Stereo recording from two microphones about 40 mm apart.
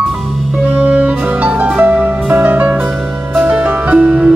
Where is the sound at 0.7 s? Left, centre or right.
Right.